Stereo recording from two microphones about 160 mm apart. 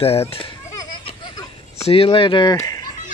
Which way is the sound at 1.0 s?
30° left (ahead or behind).